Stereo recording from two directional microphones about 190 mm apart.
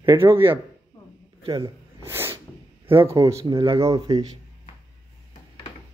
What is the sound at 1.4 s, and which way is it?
Sneeze, 20° right (ahead or behind).